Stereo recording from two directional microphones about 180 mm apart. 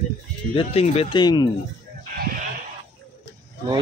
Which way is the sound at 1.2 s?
25° left (ahead or behind).